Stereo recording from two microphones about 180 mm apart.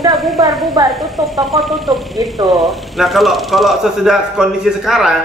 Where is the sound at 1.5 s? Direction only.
Centre (ahead or behind).